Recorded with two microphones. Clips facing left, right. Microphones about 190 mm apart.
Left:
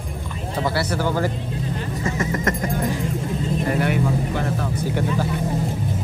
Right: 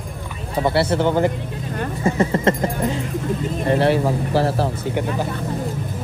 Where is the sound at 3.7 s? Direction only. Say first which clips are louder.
Right 6 dB; 30° right (ahead or behind).